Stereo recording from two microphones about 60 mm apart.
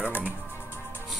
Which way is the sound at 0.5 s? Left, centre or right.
Left.